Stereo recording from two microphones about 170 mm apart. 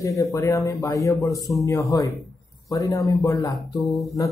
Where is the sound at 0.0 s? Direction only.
20° left (ahead or behind).